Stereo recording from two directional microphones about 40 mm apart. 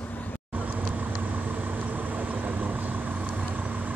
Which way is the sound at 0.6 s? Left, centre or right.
Right.